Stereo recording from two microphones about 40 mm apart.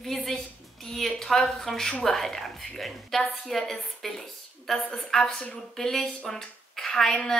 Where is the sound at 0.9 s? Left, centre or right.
Centre.